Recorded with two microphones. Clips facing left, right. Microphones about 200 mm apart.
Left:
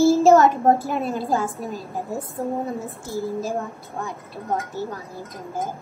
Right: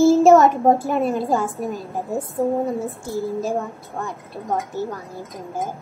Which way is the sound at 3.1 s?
15° right (ahead or behind).